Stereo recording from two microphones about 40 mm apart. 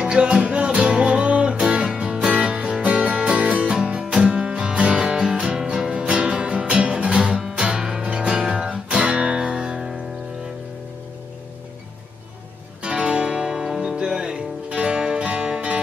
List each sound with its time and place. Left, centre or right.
0.0 s music: right
12.8 s music: right